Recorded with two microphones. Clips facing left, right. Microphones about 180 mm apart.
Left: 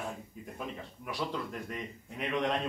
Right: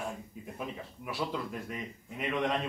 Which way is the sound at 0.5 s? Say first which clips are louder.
Right 1 dB; 5° right (ahead or behind).